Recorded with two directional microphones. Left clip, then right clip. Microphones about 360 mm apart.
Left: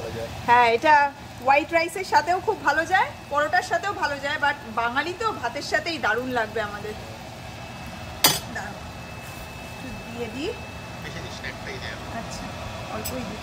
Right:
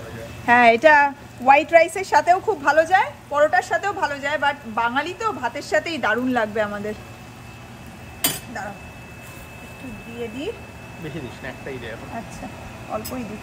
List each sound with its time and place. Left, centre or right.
0.5 s a woman's voice: centre